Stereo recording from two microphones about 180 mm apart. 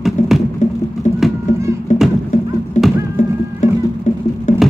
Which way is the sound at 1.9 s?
40° left (ahead or behind).